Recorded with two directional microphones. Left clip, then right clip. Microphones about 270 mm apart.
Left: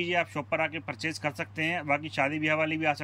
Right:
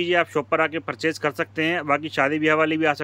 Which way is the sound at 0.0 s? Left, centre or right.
Centre.